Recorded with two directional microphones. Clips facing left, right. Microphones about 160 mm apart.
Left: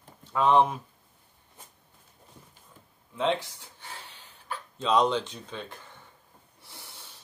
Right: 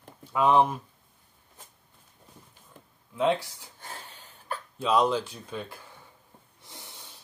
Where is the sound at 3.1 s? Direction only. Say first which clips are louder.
Right 2 dB; 10° right (ahead or behind).